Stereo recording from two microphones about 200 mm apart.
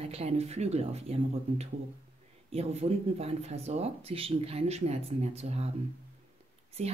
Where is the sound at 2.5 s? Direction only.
30° right (ahead or behind).